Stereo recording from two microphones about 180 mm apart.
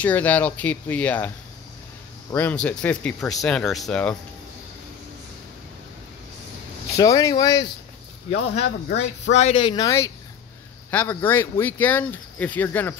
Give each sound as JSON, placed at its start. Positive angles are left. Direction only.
{"t": 0.0, "sound": "speech", "side_deg": 10}
{"t": 2.3, "sound": "speech", "side_deg": 5}
{"t": 7.0, "sound": "speech", "side_deg": 20}
{"t": 8.3, "sound": "speech", "side_deg": 90}
{"t": 9.3, "sound": "speech", "side_deg": 35}